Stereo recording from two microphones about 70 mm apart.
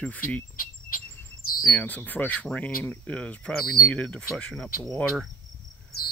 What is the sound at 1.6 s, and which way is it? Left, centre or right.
Speech, left.